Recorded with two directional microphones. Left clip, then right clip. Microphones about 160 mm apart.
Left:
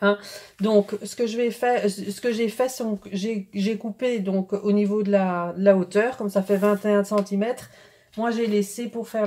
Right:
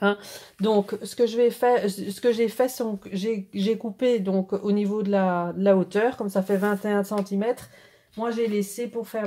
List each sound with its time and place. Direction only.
0.0 s speech: 40° right (ahead or behind)
8.2 s speech: 35° right (ahead or behind)